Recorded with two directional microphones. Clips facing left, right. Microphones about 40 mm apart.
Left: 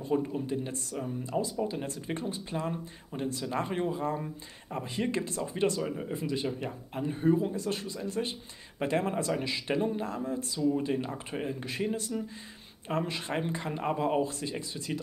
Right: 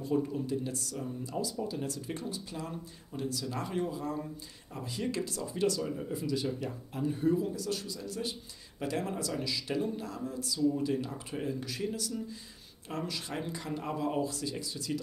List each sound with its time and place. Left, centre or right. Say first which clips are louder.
0.1 s speech: left 1 dB; left